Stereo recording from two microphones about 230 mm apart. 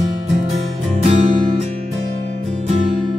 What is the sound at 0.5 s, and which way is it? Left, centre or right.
Music, right.